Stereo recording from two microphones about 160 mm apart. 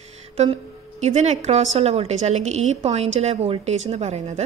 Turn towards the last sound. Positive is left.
turn(degrees=-45)  # may be behind; listen again after turning